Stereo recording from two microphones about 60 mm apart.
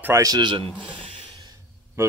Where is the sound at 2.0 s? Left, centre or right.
Right.